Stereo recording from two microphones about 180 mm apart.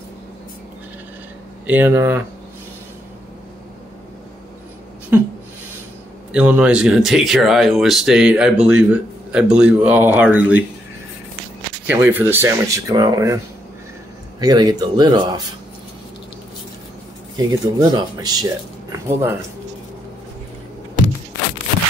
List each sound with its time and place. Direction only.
1.7 s speech: 10° right (ahead or behind)
5.1 s speech: 10° right (ahead or behind)
6.3 s speech: 10° right (ahead or behind)
11.8 s speech: 10° right (ahead or behind)
14.4 s speech: 20° right (ahead or behind)
17.5 s speech: 20° right (ahead or behind)